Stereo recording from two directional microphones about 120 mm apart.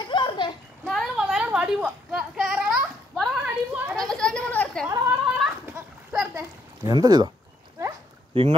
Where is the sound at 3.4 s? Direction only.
10° right (ahead or behind).